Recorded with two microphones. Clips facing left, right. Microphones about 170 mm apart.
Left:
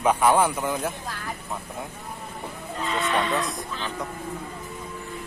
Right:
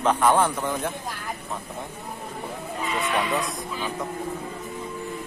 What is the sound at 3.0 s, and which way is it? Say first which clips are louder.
Speech: left 1 dB; centre (ahead or behind).